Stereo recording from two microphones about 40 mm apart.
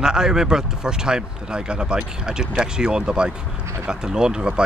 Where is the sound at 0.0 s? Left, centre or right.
Centre.